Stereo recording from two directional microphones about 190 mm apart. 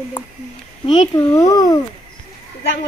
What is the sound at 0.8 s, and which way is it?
Speech, 20° left (ahead or behind).